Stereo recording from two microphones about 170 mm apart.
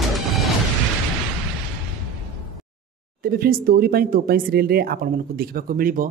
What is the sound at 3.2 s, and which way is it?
Speech, 60° right (ahead or behind).